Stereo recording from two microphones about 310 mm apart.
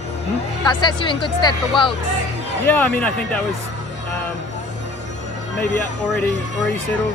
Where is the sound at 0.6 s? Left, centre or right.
Centre.